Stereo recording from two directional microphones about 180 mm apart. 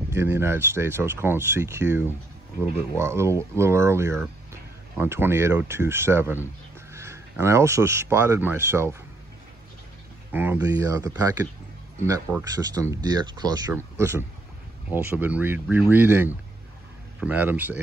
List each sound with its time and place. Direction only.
0.1 s speech: 15° right (ahead or behind)
10.3 s speech: 10° right (ahead or behind)
12.5 s speech: 20° right (ahead or behind)